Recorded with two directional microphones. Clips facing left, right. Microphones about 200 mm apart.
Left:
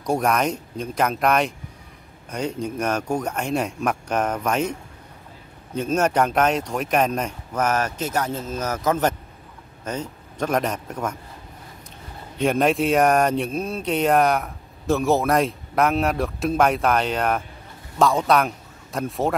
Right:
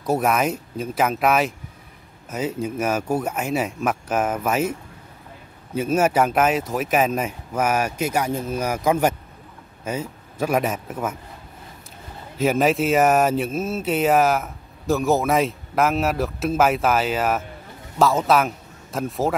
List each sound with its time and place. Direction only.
0.0 s speech: 5° right (ahead or behind)
5.8 s speech: 5° right (ahead or behind)
12.4 s a man's voice: 5° right (ahead or behind)